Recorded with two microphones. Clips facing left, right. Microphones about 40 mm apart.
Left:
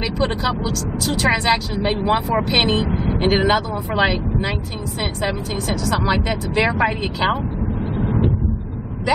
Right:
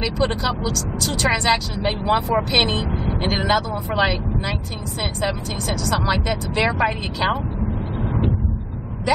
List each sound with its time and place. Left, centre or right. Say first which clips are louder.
0.0 s a woman's voice: left 1 dB; centre
5.2 s a woman's voice: left 1 dB; centre
8.0 s a sound: left 4 dB; centre